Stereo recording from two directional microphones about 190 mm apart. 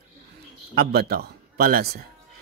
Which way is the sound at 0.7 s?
55° right (ahead or behind).